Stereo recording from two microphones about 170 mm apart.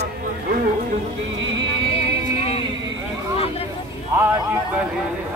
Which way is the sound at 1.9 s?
35° left (ahead or behind).